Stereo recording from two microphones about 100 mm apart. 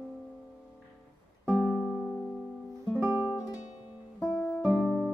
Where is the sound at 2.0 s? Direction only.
5° left (ahead or behind).